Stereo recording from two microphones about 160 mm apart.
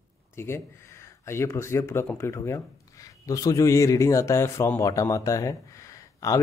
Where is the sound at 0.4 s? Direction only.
15° left (ahead or behind).